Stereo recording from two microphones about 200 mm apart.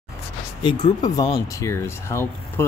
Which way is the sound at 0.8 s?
20° left (ahead or behind).